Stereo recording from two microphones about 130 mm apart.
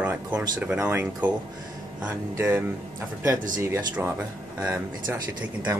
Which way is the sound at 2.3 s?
20° right (ahead or behind).